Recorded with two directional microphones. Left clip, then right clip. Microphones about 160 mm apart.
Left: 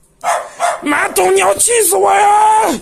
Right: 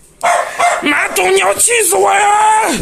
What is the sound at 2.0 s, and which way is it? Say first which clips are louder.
Speech: left 1 dB; 20° left (ahead or behind).